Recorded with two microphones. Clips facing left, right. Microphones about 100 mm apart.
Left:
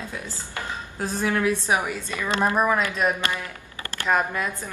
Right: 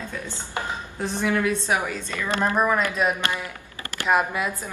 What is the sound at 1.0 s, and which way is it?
A woman's voice, 5° left (ahead or behind).